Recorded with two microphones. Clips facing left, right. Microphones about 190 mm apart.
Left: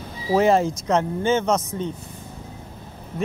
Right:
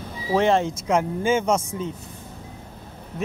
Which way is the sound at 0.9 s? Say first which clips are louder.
Even; 10° right (ahead or behind).